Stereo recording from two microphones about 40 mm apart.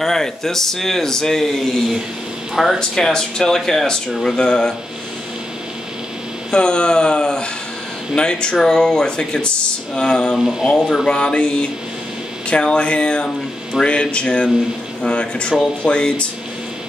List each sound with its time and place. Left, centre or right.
0.0 s speech: centre
2.5 s speech: centre
2.8 s speech: centre
6.5 s speech: left